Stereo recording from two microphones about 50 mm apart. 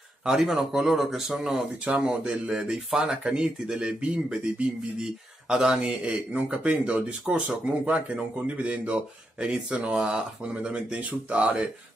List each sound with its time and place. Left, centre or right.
0.2 s speech: centre
1.9 s speech: right
2.5 s speech: centre; by 11.6 s right